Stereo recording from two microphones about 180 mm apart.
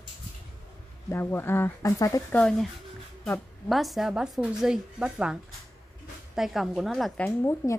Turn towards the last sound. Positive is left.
turn(degrees=15)  # may be behind; listen again after turning